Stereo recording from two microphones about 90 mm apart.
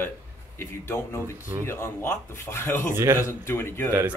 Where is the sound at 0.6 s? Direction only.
30° left (ahead or behind).